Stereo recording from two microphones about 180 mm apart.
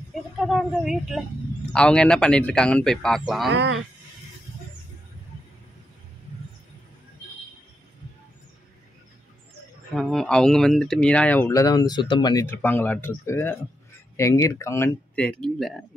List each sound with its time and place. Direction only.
0.4 s a man's voice: centre (ahead or behind)
3.4 s speech: 75° right (ahead or behind)
9.9 s speech: centre (ahead or behind)